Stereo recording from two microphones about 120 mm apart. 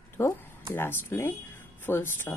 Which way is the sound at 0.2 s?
25° left (ahead or behind).